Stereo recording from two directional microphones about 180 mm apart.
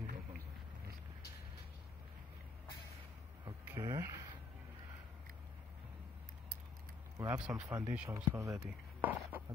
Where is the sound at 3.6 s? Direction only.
15° right (ahead or behind).